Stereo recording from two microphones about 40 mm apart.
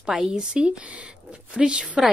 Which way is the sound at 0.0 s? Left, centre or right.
Centre.